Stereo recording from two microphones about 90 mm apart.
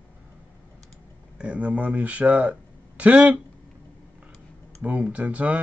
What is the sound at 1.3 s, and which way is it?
Speech, 15° right (ahead or behind).